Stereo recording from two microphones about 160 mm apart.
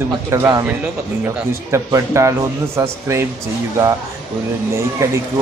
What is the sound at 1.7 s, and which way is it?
Speech, 20° right (ahead or behind).